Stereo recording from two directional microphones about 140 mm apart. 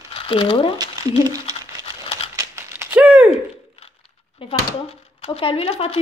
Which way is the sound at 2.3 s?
20° right (ahead or behind).